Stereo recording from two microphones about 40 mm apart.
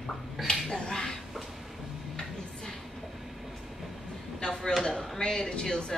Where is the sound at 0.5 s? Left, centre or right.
Centre.